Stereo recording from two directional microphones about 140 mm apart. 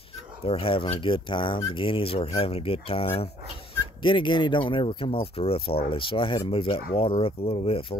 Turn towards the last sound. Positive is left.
turn(degrees=45)  # may be behind; listen again after turning